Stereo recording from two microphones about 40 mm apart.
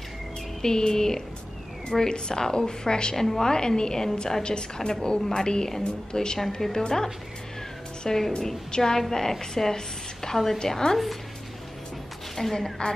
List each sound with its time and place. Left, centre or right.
0.6 s a woman's voice: centre
8.0 s a woman's voice: centre
12.4 s a woman's voice: centre